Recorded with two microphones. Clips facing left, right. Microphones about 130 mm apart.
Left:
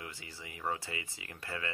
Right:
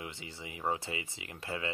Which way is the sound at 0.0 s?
20° right (ahead or behind).